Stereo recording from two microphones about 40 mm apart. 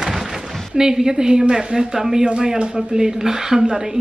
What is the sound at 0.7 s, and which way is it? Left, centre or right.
A woman's voice, centre.